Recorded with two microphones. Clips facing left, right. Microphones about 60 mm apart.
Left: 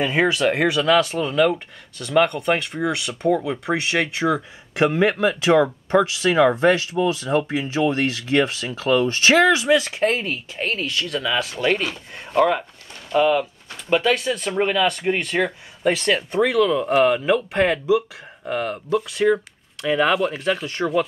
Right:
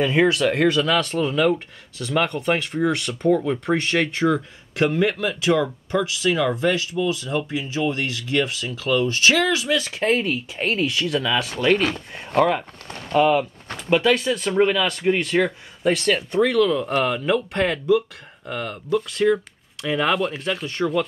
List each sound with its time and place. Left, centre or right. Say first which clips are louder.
0.0 s speech: right 1 dB; centre
5.0 s speech: left 3 dB; left
7.0 s speech: left 3 dB; left
7.8 s speech: left 3 dB; left
8.6 s speech: left 2 dB; left
9.8 s speech: even; centre